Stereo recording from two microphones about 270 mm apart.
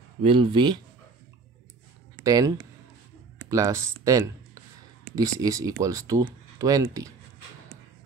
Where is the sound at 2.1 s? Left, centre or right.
Centre.